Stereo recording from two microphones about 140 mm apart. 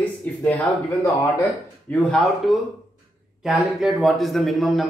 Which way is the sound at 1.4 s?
10° left (ahead or behind).